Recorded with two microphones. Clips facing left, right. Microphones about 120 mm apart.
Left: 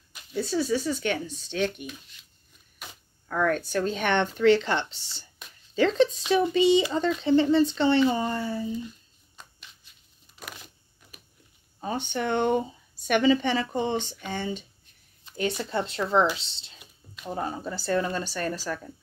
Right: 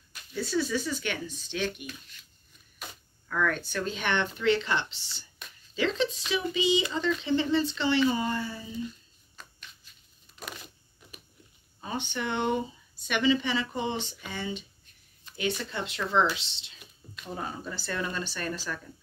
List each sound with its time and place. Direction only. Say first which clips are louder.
0.3 s speech: left 3 dB; 30° left (ahead or behind)
3.3 s speech: left 4 dB; 40° left (ahead or behind)
8.0 s speech: left 3 dB; 30° left (ahead or behind)
11.8 s speech: left 4 dB; 40° left (ahead or behind)
15.3 s speech: left 4 dB; 40° left (ahead or behind)